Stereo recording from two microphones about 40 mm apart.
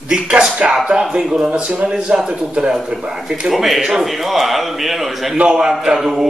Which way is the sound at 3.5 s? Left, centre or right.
Centre.